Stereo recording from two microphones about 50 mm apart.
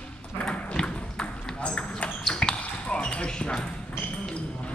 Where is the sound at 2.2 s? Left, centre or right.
Centre.